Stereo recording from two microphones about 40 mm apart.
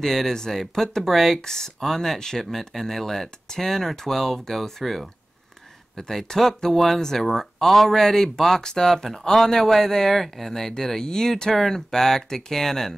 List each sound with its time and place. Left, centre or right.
0.0 s speech: centre